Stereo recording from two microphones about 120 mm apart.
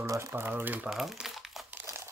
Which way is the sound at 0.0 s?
25° right (ahead or behind).